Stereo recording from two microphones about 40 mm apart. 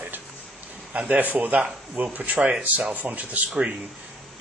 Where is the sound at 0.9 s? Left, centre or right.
Right.